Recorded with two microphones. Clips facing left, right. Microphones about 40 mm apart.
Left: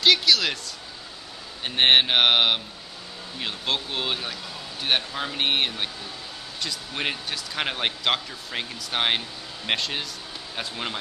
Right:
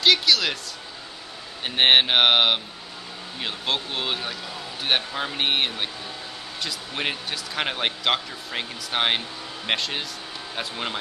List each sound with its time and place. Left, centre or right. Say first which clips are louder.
0.0 s speech: even; centre
1.6 s speech: right 1 dB; centre